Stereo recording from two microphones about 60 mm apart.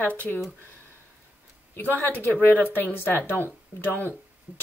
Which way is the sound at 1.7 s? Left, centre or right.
Left.